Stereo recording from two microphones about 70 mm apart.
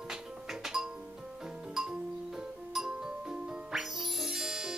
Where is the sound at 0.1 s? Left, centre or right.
Centre.